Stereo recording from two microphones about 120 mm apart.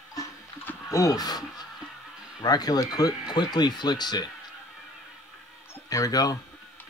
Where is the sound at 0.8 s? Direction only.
30° left (ahead or behind).